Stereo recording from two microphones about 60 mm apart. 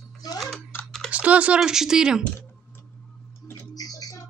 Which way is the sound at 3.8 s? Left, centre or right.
Left.